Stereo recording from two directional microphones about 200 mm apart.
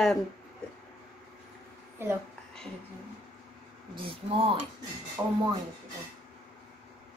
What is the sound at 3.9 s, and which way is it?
Speech, 25° right (ahead or behind).